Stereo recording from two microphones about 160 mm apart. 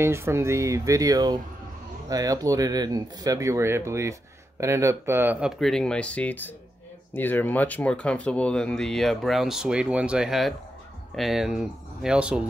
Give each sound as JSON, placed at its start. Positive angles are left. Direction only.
{"t": 0.0, "sound": "speech", "side_deg": -15}
{"t": 5.6, "sound": "speech", "side_deg": 5}